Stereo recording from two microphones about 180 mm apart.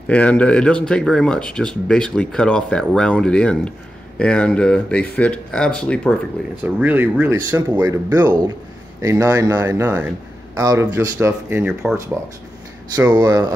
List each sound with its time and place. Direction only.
0.1 s speech: 5° left (ahead or behind)
6.6 s speech: 10° right (ahead or behind)
11.8 s speech: centre (ahead or behind)
13.1 s speech: 25° right (ahead or behind)